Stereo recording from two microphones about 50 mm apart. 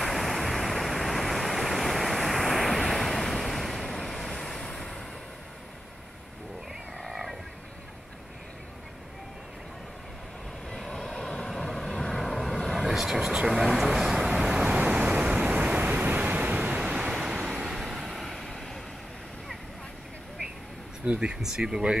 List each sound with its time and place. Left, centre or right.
0.0 s waves: centre
7.0 s vehicle: centre
10.9 s vehicle: centre
14.9 s waves: right
16.3 s vehicle: right; by 18.8 s centre
21.0 s speech: centre
21.4 s speech: centre